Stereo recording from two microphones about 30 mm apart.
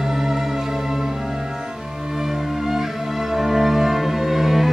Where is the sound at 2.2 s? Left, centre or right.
Centre.